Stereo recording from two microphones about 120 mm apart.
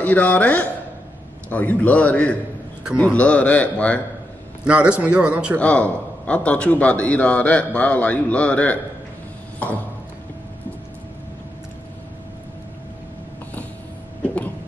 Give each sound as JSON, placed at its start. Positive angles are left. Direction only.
{"t": 0.0, "sound": "a man's voice", "side_deg": 15}
{"t": 4.6, "sound": "a man's voice", "side_deg": -10}
{"t": 5.6, "sound": "a man's voice", "side_deg": 10}
{"t": 14.2, "sound": "vehicle", "side_deg": 10}